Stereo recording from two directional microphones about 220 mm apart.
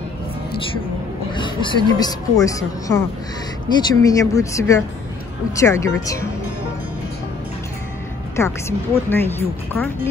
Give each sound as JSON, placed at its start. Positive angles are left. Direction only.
{"t": 1.3, "sound": "speech", "side_deg": 20}
{"t": 4.0, "sound": "speech", "side_deg": 15}
{"t": 8.4, "sound": "speech", "side_deg": 10}